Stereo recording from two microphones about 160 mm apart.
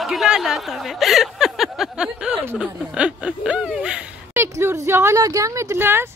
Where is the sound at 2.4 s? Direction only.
10° right (ahead or behind).